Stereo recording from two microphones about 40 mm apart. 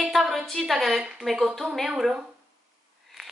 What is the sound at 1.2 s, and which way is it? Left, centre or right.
Speech, right.